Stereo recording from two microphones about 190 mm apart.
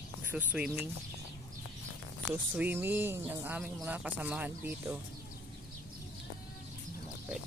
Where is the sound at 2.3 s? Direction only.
10° right (ahead or behind).